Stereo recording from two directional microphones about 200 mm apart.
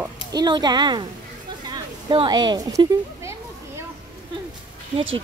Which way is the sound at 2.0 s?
25° right (ahead or behind).